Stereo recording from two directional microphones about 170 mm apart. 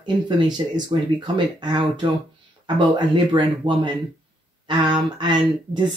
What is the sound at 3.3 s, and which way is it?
Speech, 25° right (ahead or behind).